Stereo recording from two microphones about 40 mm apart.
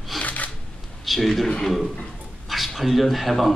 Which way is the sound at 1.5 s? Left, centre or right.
Centre.